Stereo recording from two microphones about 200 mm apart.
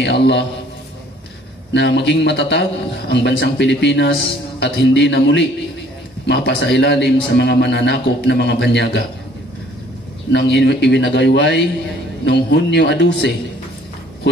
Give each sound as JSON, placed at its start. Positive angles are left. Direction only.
{"t": 0.0, "sound": "a man's voice", "side_deg": 60}
{"t": 1.7, "sound": "a man's voice", "side_deg": 60}
{"t": 10.3, "sound": "a man's voice", "side_deg": 55}